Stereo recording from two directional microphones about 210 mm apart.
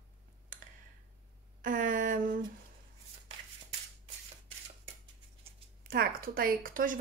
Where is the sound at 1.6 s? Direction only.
40° right (ahead or behind).